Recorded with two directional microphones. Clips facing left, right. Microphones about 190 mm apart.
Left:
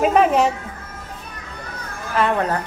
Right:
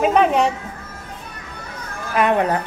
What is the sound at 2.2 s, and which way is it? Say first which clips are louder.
Speech: right 2 dB; 15° right (ahead or behind).